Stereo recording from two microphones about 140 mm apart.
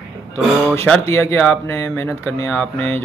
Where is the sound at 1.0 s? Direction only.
15° left (ahead or behind).